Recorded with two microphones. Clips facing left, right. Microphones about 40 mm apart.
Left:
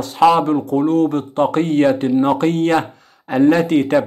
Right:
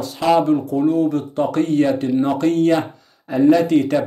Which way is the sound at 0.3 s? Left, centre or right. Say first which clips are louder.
Left 1 dB; left.